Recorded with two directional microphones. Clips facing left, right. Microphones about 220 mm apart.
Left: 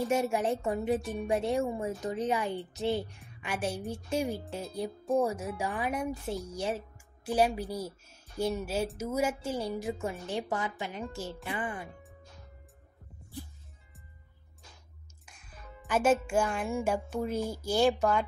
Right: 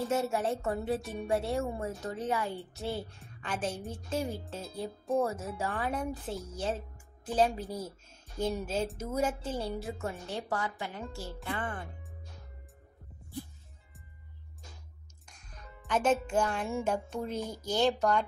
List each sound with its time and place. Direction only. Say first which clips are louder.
0.0 s a woman's voice: left 2 dB; 15° left (ahead or behind)
15.2 s speech: left 1 dB; 5° left (ahead or behind)